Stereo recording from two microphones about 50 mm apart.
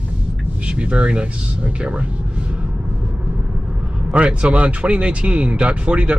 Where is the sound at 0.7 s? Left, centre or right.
Right.